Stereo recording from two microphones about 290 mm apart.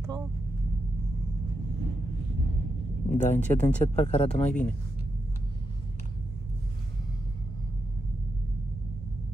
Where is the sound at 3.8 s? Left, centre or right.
Centre.